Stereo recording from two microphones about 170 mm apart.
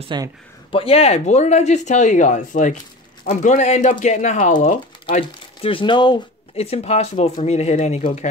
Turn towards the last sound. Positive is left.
turn(degrees=40)  # may be behind; listen again after turning